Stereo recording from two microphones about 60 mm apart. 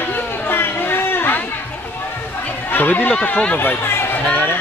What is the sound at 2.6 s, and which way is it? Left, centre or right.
Speech, left.